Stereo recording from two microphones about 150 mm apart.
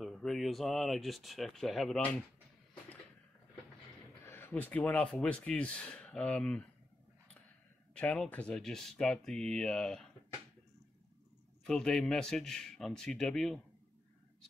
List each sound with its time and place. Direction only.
0.0 s speech: centre (ahead or behind)
4.2 s speech: 15° left (ahead or behind)
7.9 s speech: 5° left (ahead or behind)
11.6 s speech: 5° left (ahead or behind)